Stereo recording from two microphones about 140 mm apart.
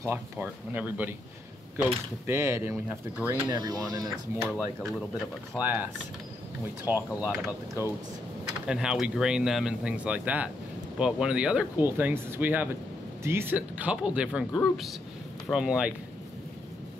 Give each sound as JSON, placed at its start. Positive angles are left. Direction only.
{"t": 0.0, "sound": "speech", "side_deg": -15}
{"t": 2.2, "sound": "speech", "side_deg": -15}
{"t": 3.4, "sound": "speech", "side_deg": -30}
{"t": 5.6, "sound": "speech", "side_deg": -10}
{"t": 6.9, "sound": "speech", "side_deg": -15}